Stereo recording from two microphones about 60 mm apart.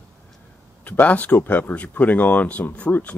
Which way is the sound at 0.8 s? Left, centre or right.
Left.